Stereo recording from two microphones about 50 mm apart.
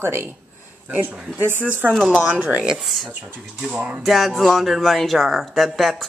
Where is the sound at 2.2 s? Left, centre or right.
Right.